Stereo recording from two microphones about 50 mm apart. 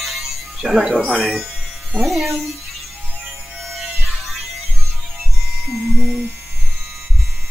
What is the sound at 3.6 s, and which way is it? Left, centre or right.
Music, centre.